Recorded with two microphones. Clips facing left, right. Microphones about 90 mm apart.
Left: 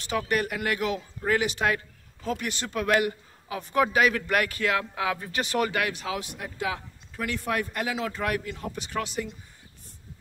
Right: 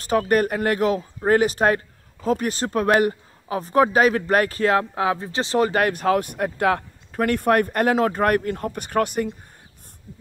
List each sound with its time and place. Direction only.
0.0 s speech: 40° right (ahead or behind)